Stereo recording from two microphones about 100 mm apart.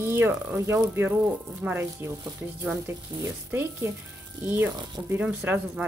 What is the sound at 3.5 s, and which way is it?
Speech, 25° right (ahead or behind).